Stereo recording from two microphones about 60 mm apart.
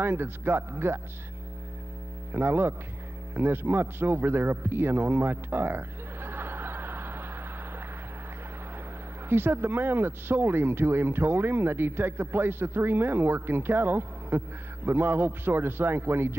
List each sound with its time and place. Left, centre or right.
0.0 s speech: right
2.3 s a man's voice: right
9.3 s speech: right